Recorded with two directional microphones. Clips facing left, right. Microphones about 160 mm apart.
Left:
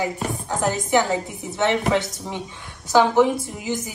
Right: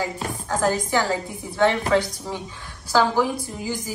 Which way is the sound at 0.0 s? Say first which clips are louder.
Left 2 dB; 20° left (ahead or behind).